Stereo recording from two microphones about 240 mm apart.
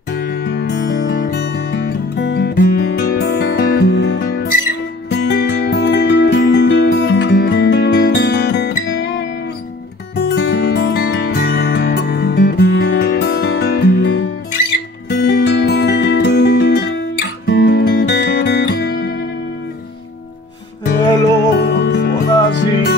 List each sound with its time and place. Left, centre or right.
0.1 s music: left
21.5 s music: left